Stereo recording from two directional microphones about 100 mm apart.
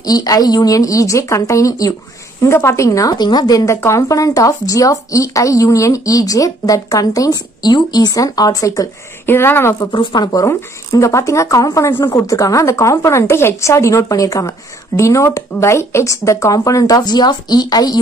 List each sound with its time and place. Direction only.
0.0 s a woman's voice: 40° left (ahead or behind)
9.9 s speech: 45° left (ahead or behind)
10.4 s a woman's voice: 30° left (ahead or behind)